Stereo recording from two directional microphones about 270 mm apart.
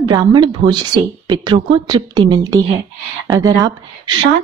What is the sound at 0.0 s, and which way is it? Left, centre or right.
A woman's voice, centre.